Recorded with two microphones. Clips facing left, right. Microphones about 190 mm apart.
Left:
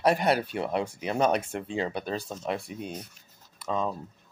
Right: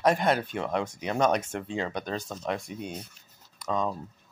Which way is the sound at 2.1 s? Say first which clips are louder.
Left 1 dB; 5° left (ahead or behind).